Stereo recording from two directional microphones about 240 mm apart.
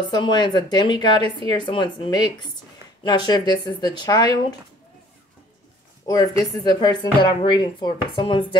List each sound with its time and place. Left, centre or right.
0.1 s speech: centre
6.0 s speech: centre